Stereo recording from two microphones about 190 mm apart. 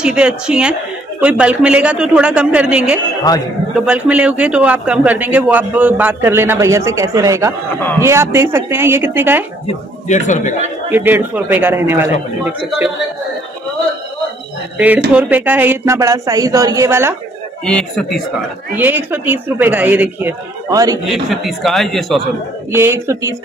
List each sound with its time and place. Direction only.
0.0 s a man's voice: 5° right (ahead or behind)
3.3 s a man's voice: 20° left (ahead or behind)
3.7 s a man's voice: 5° right (ahead or behind)
9.7 s a man's voice: 40° left (ahead or behind)
10.9 s a man's voice: 10° right (ahead or behind)
15.1 s a man's voice: 10° right (ahead or behind)
17.6 s a man's voice: 5° left (ahead or behind)
18.8 s a man's voice: 10° right (ahead or behind)
21.1 s a man's voice: centre (ahead or behind)
22.7 s a man's voice: 15° right (ahead or behind)